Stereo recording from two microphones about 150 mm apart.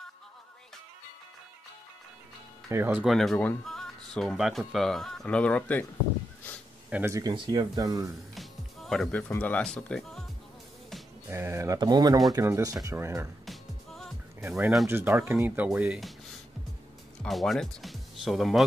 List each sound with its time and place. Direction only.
2.7 s speech: 15° right (ahead or behind)
3.1 s speech: centre (ahead or behind)
6.9 s speech: 15° right (ahead or behind)
8.4 s music: centre (ahead or behind)
9.3 s speech: 10° left (ahead or behind)
11.2 s speech: 15° right (ahead or behind)
13.5 s music: centre (ahead or behind)
14.5 s speech: centre (ahead or behind)
14.9 s speech: 15° right (ahead or behind)
17.2 s speech: centre (ahead or behind)